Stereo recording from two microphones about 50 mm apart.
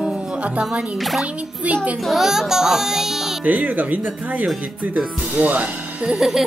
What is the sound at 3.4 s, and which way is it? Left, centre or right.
Speech, right.